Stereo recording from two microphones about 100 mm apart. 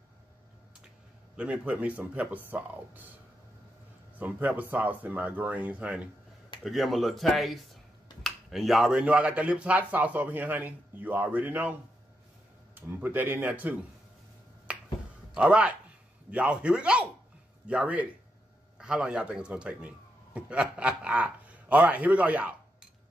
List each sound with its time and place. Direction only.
1.3 s speech: 10° right (ahead or behind)
4.2 s speech: 15° right (ahead or behind)
6.6 s speech: centre (ahead or behind); by 11.7 s 20° right (ahead or behind)
12.7 s speech: 20° right (ahead or behind)
15.3 s a man's voice: 10° right (ahead or behind)